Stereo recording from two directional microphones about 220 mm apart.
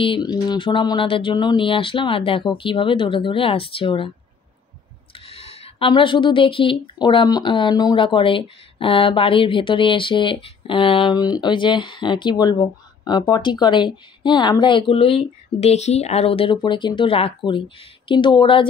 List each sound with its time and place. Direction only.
0.0 s speech: 20° left (ahead or behind)
5.1 s speech: 25° left (ahead or behind)